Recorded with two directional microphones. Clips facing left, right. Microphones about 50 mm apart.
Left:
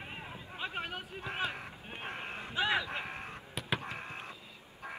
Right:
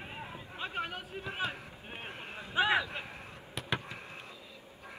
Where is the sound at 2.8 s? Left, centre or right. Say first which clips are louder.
Left 3 dB; left.